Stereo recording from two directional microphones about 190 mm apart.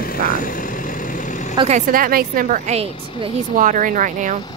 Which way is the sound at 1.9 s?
50° right (ahead or behind).